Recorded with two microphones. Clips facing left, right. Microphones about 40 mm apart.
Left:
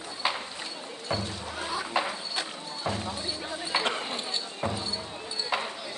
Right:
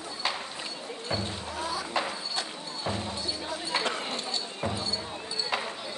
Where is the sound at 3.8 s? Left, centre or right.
Left.